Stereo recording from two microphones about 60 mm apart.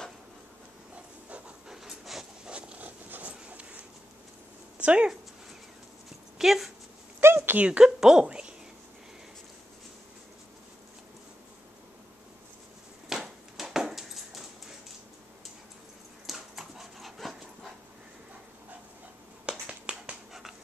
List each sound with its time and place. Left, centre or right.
1.7 s dog: centre
2.5 s a sound: centre
3.1 s dog: right
4.7 s speech: centre
6.3 s speech: centre
7.2 s a sound: right
7.6 s a woman's voice: centre
13.1 s a sound: centre
16.3 s dog: centre
19.4 s finger snapping: centre